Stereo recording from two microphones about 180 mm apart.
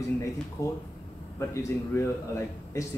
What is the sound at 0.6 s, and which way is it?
Speech, 15° left (ahead or behind).